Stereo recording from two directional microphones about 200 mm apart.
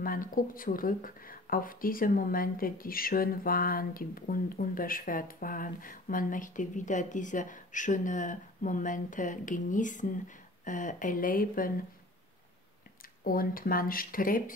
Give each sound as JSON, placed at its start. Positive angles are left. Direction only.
{"t": 0.0, "sound": "speech", "side_deg": 45}
{"t": 13.2, "sound": "speech", "side_deg": 45}